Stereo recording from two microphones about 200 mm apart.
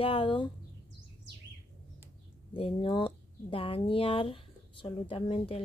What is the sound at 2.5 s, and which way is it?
Speech, 25° left (ahead or behind).